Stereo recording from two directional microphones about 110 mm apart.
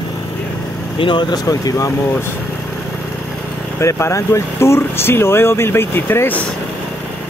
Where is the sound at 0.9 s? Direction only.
50° left (ahead or behind).